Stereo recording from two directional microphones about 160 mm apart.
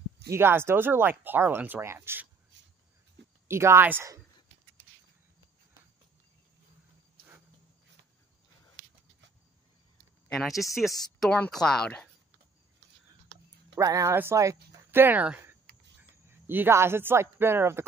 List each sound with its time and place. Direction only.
0.3 s speech: 15° right (ahead or behind)
3.4 s speech: 15° right (ahead or behind)
10.3 s speech: centre (ahead or behind)
13.7 s speech: 20° right (ahead or behind)